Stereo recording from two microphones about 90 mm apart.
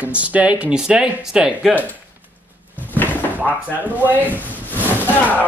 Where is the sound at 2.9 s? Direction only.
20° left (ahead or behind).